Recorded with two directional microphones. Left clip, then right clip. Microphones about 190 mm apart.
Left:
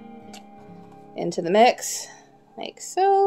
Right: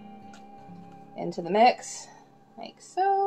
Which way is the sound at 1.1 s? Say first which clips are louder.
Left 6 dB; 65° left (ahead or behind).